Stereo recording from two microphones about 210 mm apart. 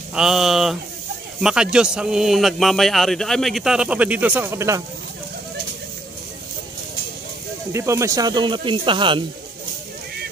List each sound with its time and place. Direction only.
0.1 s a man's voice: centre (ahead or behind)
7.7 s speech: 15° right (ahead or behind)